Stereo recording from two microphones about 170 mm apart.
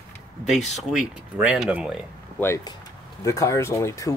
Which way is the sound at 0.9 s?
5° right (ahead or behind).